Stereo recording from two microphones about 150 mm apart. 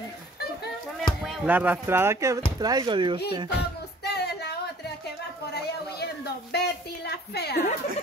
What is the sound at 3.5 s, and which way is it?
Music, 90° left.